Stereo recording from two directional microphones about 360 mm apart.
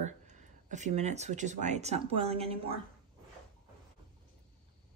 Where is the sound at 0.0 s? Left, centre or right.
Centre.